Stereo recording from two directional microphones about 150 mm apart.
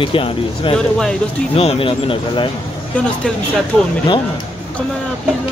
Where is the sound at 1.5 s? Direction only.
40° left (ahead or behind).